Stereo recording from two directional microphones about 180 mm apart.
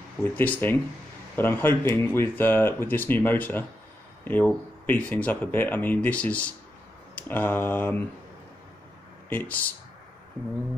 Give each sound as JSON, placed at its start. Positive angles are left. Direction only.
{"t": 0.2, "sound": "speech", "side_deg": 10}
{"t": 9.3, "sound": "speech", "side_deg": 10}